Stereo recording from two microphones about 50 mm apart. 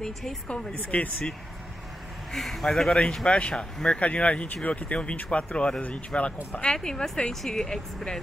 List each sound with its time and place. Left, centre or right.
0.0 s speech: centre
0.7 s speech: left
2.3 s speech: centre
3.3 s speech: left
6.7 s speech: centre